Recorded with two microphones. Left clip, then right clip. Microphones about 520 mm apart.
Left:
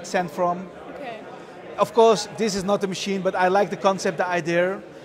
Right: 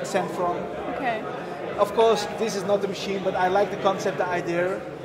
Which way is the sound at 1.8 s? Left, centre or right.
Left.